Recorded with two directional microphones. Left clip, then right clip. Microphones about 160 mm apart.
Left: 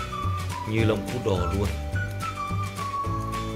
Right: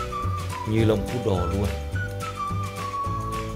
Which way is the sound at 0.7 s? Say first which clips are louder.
Right 3 dB; 20° right (ahead or behind).